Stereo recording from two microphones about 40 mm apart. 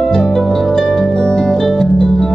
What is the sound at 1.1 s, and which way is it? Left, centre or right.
Music, left.